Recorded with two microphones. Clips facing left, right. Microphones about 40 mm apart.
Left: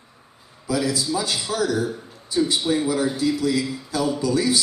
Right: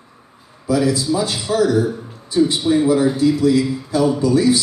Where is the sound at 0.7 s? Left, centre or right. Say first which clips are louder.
Right 6 dB; right.